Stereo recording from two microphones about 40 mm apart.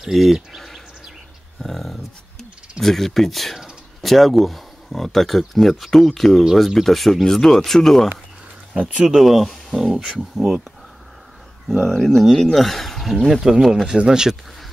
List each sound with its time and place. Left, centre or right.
0.0 s speech: centre
8.7 s speech: right
9.1 s speech: centre
12.0 s speech: centre